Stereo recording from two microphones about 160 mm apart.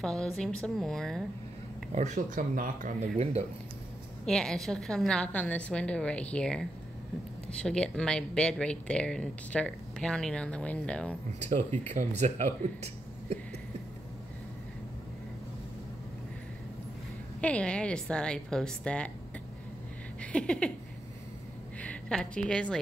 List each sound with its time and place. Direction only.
0.0 s speech: 5° left (ahead or behind)
2.0 s speech: 50° right (ahead or behind)
4.3 s speech: 5° left (ahead or behind)
11.3 s speech: 45° right (ahead or behind)
17.4 s a woman's voice: 5° left (ahead or behind)
20.2 s a sound: 5° left (ahead or behind)
21.8 s a woman's voice: 5° left (ahead or behind)